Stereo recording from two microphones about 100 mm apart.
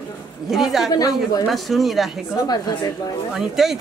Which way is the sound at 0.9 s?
40° left (ahead or behind).